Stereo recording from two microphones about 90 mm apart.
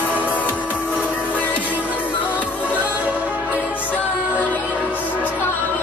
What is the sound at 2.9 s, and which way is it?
Music, 15° right (ahead or behind).